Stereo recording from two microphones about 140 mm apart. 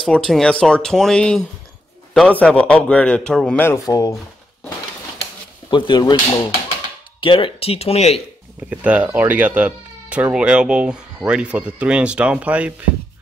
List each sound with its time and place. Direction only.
0.0 s a man's voice: 5° left (ahead or behind)
3.6 s speech: 25° left (ahead or behind)
5.2 s dishes: 35° left (ahead or behind)
7.2 s speech: 40° left (ahead or behind)
8.6 s speech: 10° right (ahead or behind)